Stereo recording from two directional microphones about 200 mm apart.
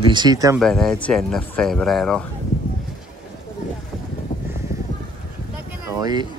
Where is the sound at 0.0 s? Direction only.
20° right (ahead or behind).